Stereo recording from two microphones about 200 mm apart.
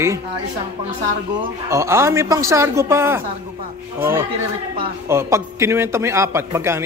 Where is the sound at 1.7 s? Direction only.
15° right (ahead or behind).